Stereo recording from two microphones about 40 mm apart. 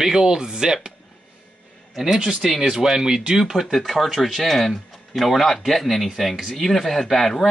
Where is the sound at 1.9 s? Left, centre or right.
Centre.